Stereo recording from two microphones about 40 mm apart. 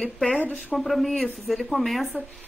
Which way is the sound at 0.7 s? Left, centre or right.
Centre.